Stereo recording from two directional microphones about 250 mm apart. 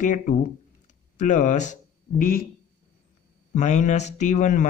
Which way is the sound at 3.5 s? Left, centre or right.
Left.